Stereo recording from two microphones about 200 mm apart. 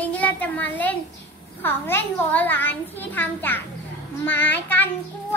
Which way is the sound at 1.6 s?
10° left (ahead or behind).